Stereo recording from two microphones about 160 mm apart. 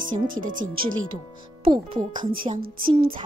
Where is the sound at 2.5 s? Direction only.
65° right (ahead or behind).